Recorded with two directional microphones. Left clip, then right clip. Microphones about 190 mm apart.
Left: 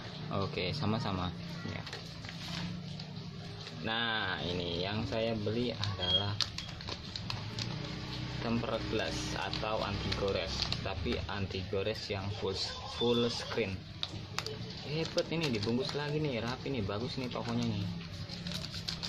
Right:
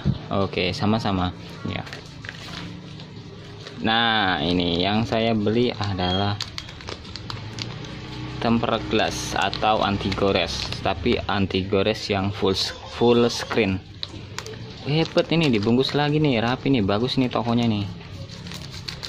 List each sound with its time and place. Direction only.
0.3 s speech: 30° right (ahead or behind)
3.8 s speech: 55° right (ahead or behind)
8.5 s speech: 55° right (ahead or behind)
14.9 s speech: 55° right (ahead or behind)